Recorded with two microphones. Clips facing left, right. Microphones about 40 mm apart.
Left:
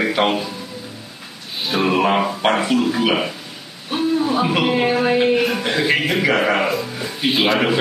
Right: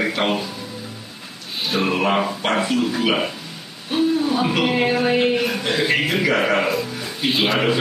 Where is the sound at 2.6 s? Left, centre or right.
Centre.